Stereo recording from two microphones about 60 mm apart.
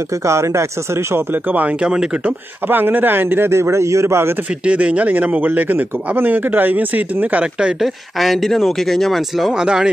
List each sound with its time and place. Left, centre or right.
0.2 s a man's voice: right
1.3 s speech: right
1.8 s speech: centre
2.7 s a man's voice: right
4.6 s speech: right
7.8 s speech: centre
9.5 s speech: centre